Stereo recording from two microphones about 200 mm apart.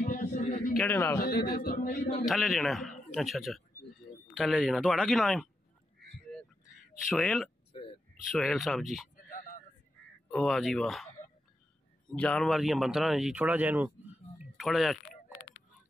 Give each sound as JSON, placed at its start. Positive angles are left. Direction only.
{"t": 0.0, "sound": "a sound", "side_deg": 40}
{"t": 0.7, "sound": "a man's voice", "side_deg": 10}
{"t": 1.2, "sound": "speech", "side_deg": 50}
{"t": 2.2, "sound": "speech", "side_deg": 0}
{"t": 6.1, "sound": "duck", "side_deg": 5}
{"t": 7.1, "sound": "speech", "side_deg": 0}
{"t": 7.7, "sound": "a sound", "side_deg": 25}
{"t": 8.1, "sound": "speech", "side_deg": 0}
{"t": 10.3, "sound": "speech", "side_deg": 0}
{"t": 12.1, "sound": "speech", "side_deg": 5}
{"t": 14.4, "sound": "a sound", "side_deg": 0}